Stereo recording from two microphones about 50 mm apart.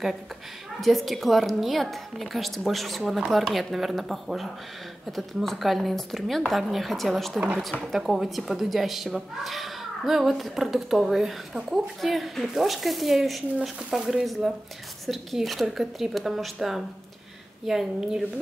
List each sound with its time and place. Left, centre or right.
0.7 s a child's voice: centre
7.3 s speech: right
7.8 s a woman's voice: centre